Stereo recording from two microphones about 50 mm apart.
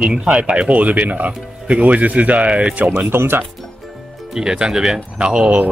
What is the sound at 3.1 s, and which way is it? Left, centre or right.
Speech, right.